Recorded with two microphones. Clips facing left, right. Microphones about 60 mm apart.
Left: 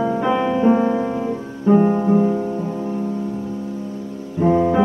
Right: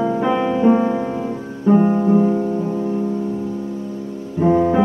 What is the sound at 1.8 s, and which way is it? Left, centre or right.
Music, left.